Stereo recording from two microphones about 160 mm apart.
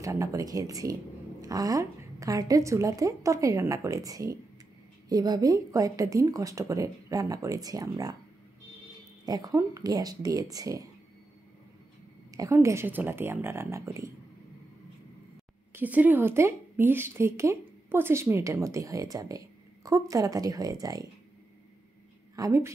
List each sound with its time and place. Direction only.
0.0 s a woman's voice: 20° right (ahead or behind)
9.2 s a woman's voice: 25° right (ahead or behind)
12.3 s a woman's voice: 20° right (ahead or behind)
15.7 s a woman's voice: 10° right (ahead or behind)
22.3 s a woman's voice: 20° right (ahead or behind)